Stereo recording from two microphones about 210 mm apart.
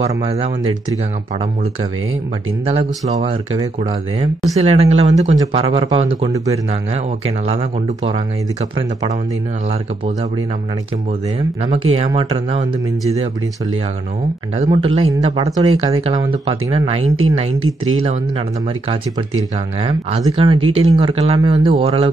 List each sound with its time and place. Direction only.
0.2 s speech: 30° right (ahead or behind)
2.6 s speech: 30° right (ahead or behind)
4.6 s speech: 30° right (ahead or behind)
11.3 s speech: 30° right (ahead or behind)
14.6 s speech: 25° right (ahead or behind)
17.6 s speech: 75° right (ahead or behind)
19.8 s speech: 25° right (ahead or behind)